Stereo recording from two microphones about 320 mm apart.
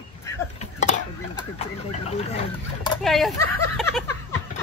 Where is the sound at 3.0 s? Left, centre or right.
Centre.